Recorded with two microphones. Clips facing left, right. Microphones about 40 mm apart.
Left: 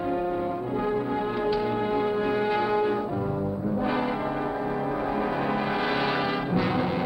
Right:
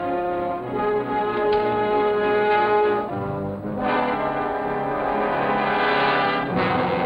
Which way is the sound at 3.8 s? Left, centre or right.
Right.